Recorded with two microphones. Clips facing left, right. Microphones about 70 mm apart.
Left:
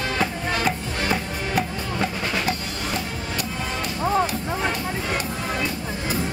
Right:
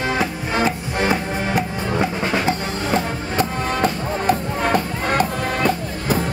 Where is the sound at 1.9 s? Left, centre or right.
Right.